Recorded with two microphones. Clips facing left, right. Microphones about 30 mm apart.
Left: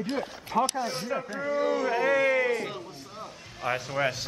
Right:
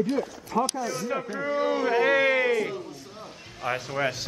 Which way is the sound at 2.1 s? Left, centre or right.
Right.